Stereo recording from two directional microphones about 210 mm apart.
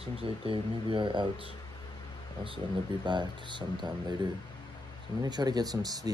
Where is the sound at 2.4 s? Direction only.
20° right (ahead or behind).